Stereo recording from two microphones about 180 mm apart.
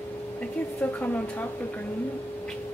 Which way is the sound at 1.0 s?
10° left (ahead or behind).